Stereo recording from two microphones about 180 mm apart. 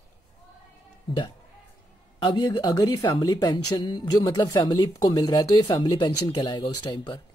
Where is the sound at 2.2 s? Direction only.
25° left (ahead or behind).